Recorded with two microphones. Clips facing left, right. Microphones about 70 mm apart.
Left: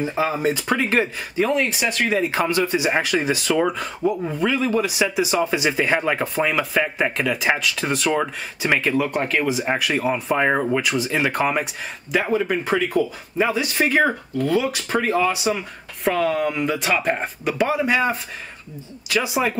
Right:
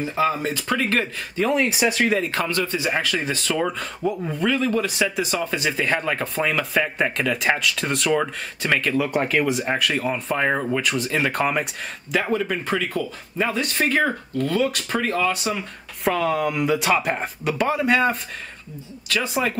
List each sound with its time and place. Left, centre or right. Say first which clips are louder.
0.0 s speech: left 1 dB; centre
1.4 s speech: even; centre
2.1 s speech: left 3 dB; centre
8.1 s speech: even; centre
9.0 s speech: even; centre